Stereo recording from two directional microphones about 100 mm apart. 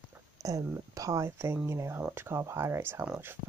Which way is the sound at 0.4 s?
35° right (ahead or behind).